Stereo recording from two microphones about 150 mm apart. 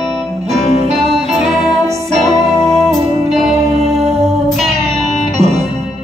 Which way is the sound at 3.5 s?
45° right (ahead or behind).